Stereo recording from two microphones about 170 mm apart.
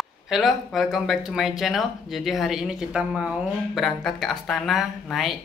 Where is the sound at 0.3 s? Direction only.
Centre (ahead or behind).